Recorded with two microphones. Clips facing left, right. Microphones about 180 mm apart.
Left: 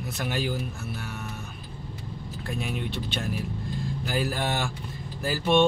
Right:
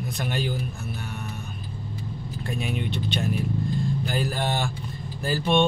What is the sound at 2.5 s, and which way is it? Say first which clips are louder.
Speech: right 2 dB; centre (ahead or behind).